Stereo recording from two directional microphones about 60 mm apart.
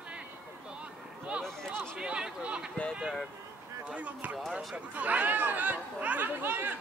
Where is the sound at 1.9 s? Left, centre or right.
Centre.